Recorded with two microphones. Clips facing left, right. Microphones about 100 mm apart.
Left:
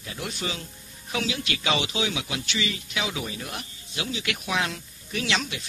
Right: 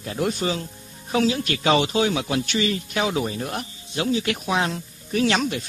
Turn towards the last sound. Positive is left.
turn(degrees=-45)  # may be behind; listen again after turning